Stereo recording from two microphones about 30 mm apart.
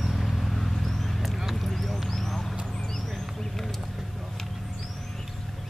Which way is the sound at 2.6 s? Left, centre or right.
Centre.